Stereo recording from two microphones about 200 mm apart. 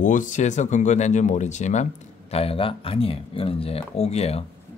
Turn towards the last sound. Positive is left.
turn(degrees=30)  # may be behind; listen again after turning